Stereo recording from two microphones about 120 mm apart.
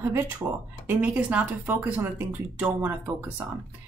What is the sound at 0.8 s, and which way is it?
Speech, 15° right (ahead or behind).